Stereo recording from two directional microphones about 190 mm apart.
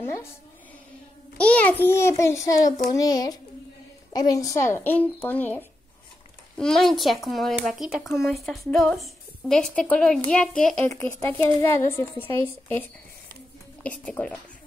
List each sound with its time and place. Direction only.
0.0 s a woman's voice: 15° left (ahead or behind)
1.4 s a child's voice: 5° left (ahead or behind)
14.0 s speech: 5° left (ahead or behind)